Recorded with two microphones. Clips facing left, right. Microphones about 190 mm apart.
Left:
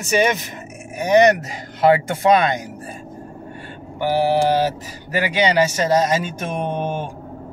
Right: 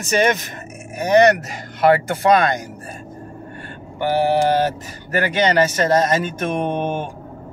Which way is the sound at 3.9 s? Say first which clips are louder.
Even; 50° right (ahead or behind).